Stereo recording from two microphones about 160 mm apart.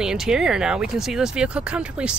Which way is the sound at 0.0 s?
5° right (ahead or behind).